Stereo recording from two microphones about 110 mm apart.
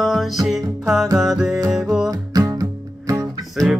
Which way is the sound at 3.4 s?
Centre (ahead or behind).